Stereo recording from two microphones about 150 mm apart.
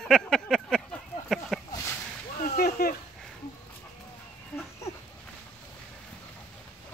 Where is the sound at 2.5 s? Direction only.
85° left.